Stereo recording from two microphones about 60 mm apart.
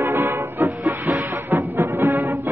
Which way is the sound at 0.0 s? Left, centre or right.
Right.